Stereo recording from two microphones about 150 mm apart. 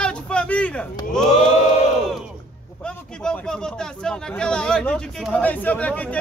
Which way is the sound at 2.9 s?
5° left (ahead or behind).